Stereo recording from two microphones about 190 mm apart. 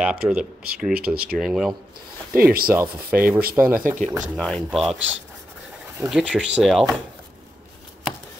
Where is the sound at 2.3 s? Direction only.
50° right (ahead or behind).